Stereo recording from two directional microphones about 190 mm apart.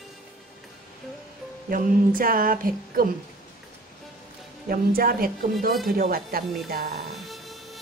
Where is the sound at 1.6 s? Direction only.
50° right (ahead or behind).